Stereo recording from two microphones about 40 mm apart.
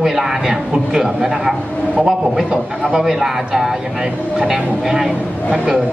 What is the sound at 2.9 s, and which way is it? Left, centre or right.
Speech, centre.